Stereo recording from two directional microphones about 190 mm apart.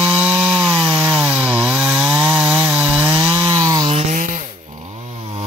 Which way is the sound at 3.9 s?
45° right (ahead or behind).